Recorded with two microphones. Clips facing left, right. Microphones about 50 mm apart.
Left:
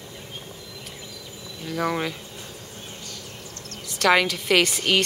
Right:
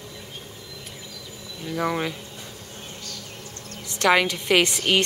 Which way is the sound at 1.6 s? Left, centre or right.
Centre.